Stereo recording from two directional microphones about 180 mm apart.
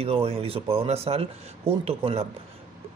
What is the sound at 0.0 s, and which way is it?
Speech, 35° right (ahead or behind).